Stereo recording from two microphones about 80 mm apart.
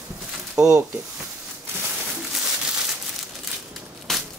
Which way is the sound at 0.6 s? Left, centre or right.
Centre.